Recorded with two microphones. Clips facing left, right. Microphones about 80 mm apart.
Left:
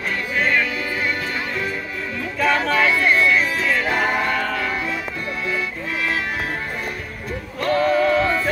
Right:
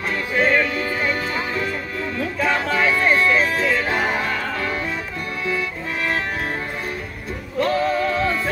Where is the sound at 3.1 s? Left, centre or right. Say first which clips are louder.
Even; right.